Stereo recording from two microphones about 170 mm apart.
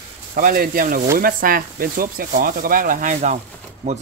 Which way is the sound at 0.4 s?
60° right (ahead or behind).